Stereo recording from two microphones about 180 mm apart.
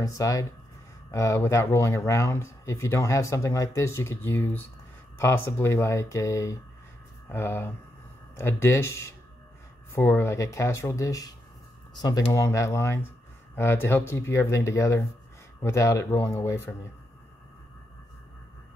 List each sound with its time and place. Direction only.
0.0 s speech: 20° left (ahead or behind)